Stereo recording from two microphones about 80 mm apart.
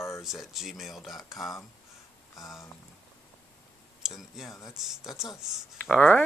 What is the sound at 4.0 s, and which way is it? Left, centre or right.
Speech, centre.